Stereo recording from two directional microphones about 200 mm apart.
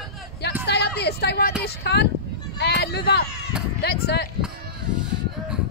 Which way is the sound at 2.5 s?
55° left (ahead or behind).